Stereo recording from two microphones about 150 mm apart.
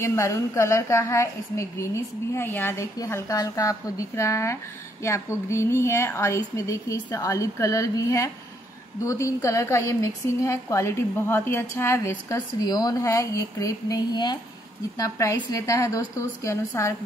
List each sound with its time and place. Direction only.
0.0 s a woman's voice: 20° left (ahead or behind)
12.5 s a woman's voice: 25° left (ahead or behind)